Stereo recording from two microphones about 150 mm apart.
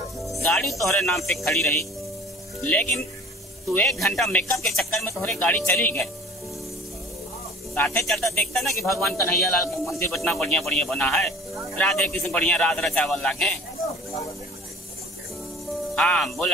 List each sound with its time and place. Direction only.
0.2 s music: centre (ahead or behind)
0.8 s speech: centre (ahead or behind)
7.7 s speech: 10° left (ahead or behind)
8.8 s speech: 15° left (ahead or behind)
10.1 s speech: 5° left (ahead or behind)
15.9 s speech: 5° left (ahead or behind)